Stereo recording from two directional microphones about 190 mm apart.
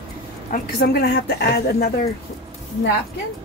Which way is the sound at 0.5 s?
55° left (ahead or behind).